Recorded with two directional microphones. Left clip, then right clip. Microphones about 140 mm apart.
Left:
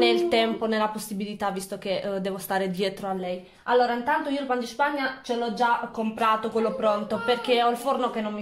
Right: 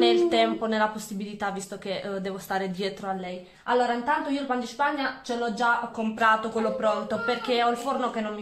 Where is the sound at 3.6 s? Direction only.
35° left (ahead or behind).